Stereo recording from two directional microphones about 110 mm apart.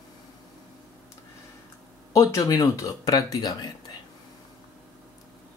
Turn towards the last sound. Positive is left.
turn(degrees=35)  # may be behind; listen again after turning